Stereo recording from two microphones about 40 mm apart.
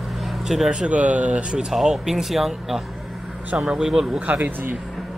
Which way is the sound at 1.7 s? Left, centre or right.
Centre.